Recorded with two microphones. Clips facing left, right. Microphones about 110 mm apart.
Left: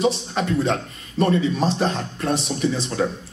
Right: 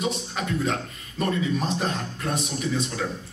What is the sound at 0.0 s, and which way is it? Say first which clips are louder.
A man's voice: left 7 dB; 30° left (ahead or behind).